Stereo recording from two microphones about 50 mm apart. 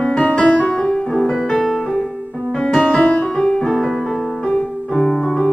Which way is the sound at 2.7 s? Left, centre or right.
Left.